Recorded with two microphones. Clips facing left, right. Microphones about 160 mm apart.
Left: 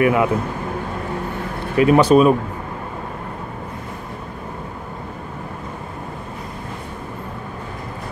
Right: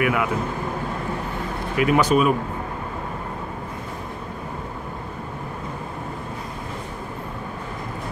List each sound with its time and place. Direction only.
0.0 s speech: 30° left (ahead or behind)
1.8 s speech: 30° left (ahead or behind)